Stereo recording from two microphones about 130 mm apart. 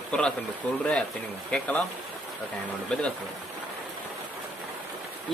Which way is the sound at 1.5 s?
5° left (ahead or behind).